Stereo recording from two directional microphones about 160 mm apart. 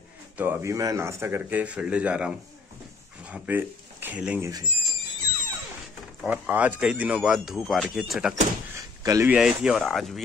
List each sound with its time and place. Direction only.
0.4 s a man's voice: 15° right (ahead or behind)
4.4 s speech: 20° right (ahead or behind)
6.2 s speech: 10° right (ahead or behind)
8.7 s door: 20° right (ahead or behind)
9.3 s speech: 5° right (ahead or behind)